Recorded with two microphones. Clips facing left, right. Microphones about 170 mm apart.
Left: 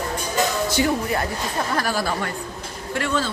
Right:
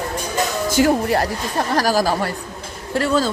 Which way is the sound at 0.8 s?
60° right (ahead or behind).